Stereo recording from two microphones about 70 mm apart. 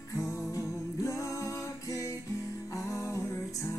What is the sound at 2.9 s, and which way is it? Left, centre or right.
Music, left.